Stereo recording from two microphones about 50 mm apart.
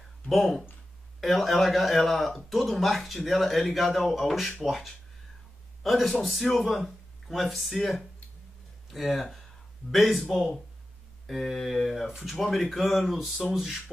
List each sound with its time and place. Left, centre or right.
0.3 s speech: centre